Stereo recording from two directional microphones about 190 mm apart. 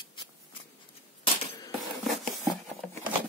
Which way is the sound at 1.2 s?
25° left (ahead or behind).